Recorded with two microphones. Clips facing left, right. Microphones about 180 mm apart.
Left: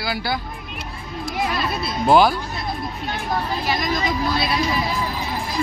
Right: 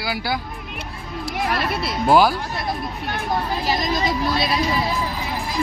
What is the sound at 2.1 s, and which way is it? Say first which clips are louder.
Speech: left 1 dB; 5° right (ahead or behind).